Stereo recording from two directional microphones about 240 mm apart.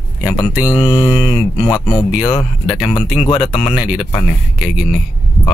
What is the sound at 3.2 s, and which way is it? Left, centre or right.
Speech, left.